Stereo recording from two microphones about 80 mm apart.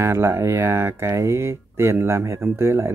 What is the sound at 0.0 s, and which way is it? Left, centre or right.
Speech, right.